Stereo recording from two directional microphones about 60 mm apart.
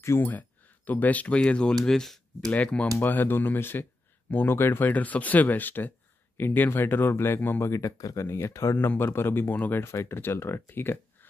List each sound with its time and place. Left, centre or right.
0.2 s speech: left; by 2.1 s centre
2.5 s speech: centre
3.0 s speech: left
7.7 s speech: left
8.3 s speech: left
8.7 s speech: left